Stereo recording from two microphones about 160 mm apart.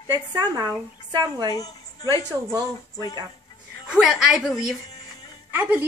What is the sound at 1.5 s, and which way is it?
Speech, 25° left (ahead or behind).